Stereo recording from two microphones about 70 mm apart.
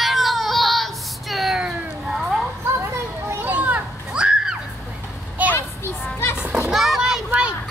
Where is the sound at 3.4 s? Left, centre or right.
Right.